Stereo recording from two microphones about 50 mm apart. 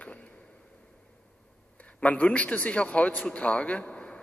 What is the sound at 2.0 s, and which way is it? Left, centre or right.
A man's voice, left.